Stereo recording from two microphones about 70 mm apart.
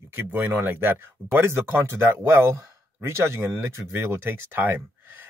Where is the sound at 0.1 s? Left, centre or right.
Right.